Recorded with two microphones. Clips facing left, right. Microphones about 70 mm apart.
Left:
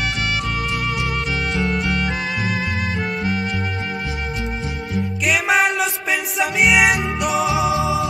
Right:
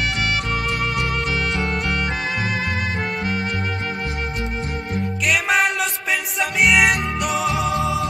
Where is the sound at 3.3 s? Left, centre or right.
Right.